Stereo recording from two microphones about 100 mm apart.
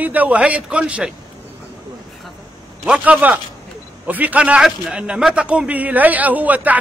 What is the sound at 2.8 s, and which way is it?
A man's voice, 10° right (ahead or behind).